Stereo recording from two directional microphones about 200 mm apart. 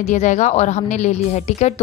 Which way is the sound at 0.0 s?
35° left (ahead or behind).